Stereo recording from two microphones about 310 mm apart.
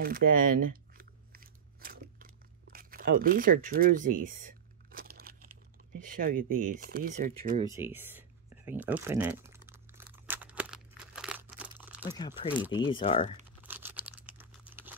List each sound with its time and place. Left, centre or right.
0.0 s chewing: right
6.0 s speech: right
7.7 s typing: centre
12.2 s speech: centre
13.6 s crumpling: centre